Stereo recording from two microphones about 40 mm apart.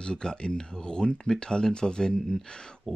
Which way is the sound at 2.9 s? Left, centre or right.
Centre.